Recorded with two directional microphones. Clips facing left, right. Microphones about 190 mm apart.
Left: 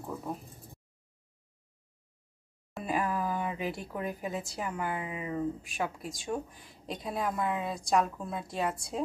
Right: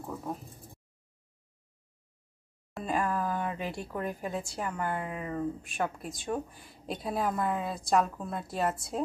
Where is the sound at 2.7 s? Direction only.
5° left (ahead or behind).